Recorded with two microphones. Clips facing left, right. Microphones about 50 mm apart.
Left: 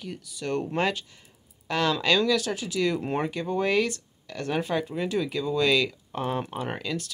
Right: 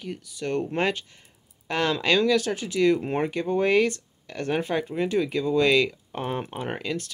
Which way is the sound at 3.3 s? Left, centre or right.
Right.